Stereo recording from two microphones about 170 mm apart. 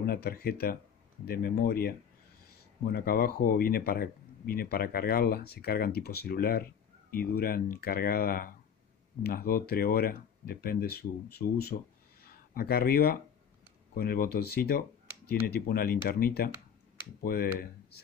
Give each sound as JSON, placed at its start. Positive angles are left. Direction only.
{"t": 0.0, "sound": "speech", "side_deg": 60}